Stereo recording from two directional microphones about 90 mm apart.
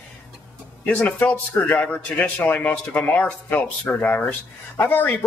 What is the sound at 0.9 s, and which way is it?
Speech, 20° left (ahead or behind).